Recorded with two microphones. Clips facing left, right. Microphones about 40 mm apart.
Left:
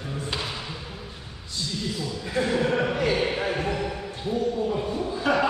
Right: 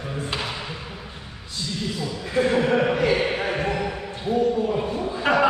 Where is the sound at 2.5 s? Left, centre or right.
Right.